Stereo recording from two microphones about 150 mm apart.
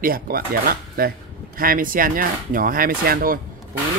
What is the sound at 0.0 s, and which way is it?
Speech, 75° right (ahead or behind).